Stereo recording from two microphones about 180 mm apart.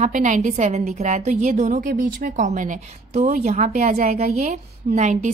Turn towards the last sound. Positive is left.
turn(degrees=-40)  # may be behind; listen again after turning